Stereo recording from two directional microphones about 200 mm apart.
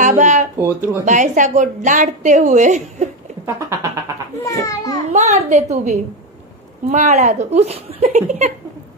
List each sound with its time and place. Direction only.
0.0 s a woman's voice: 40° right (ahead or behind)
3.4 s goat: 15° right (ahead or behind)
4.5 s a child's voice: 15° left (ahead or behind)
5.1 s a woman's voice: 35° right (ahead or behind)